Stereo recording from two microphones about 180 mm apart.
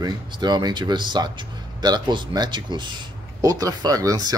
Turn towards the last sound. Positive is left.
turn(degrees=-20)  # may be behind; listen again after turning